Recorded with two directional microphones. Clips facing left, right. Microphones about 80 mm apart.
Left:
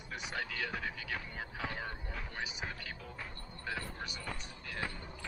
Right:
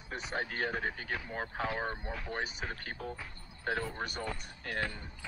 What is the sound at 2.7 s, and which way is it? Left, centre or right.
Speech, right.